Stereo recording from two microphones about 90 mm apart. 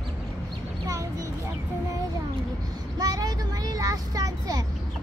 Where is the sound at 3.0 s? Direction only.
45° right (ahead or behind).